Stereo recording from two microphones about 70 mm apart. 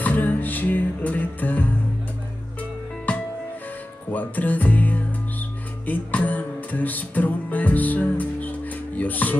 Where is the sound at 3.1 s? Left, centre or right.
Centre.